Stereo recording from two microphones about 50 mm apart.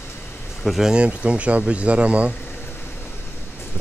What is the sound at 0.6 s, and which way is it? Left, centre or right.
Speech, centre.